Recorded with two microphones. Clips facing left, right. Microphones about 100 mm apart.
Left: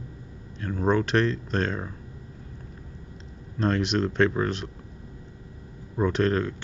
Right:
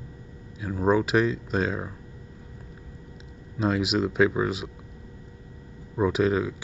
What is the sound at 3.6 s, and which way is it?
Speech, 5° right (ahead or behind).